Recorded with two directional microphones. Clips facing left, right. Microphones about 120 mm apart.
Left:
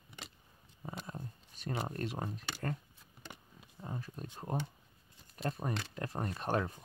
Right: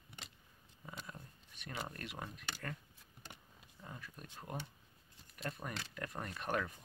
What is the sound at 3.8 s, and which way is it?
Speech, 35° left (ahead or behind).